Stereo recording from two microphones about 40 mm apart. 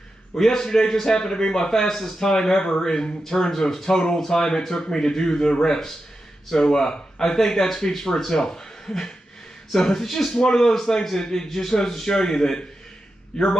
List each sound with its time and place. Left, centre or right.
0.4 s a man's voice: centre